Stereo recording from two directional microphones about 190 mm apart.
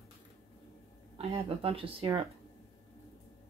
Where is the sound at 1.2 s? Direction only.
30° right (ahead or behind).